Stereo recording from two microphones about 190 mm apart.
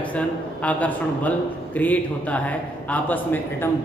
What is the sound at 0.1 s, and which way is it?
A man's voice, 5° left (ahead or behind).